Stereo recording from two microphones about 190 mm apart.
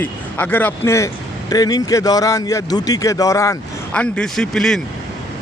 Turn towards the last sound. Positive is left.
turn(degrees=5)  # may be behind; listen again after turning